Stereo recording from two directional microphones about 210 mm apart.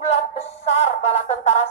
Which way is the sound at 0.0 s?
30° left (ahead or behind).